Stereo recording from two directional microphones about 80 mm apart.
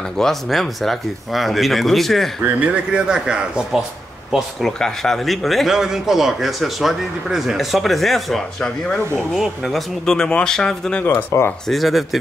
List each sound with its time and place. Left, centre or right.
0.2 s speech: centre
2.6 s speech: centre
4.3 s speech: centre
9.3 s speech: centre
11.1 s speech: left
11.7 s speech: centre